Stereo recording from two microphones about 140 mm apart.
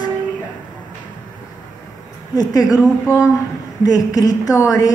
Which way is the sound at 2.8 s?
10° right (ahead or behind).